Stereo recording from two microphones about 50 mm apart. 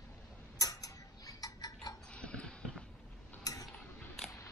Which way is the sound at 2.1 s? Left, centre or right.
Left.